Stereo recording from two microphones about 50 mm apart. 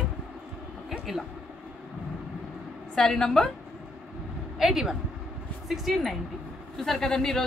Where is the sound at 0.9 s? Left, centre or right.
Centre.